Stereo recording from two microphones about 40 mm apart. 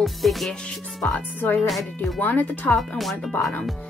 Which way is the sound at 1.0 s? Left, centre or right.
Left.